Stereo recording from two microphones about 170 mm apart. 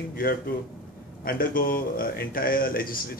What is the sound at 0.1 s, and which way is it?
Speech, 60° left (ahead or behind).